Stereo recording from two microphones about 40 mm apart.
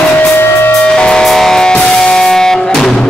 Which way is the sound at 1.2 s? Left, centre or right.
Centre.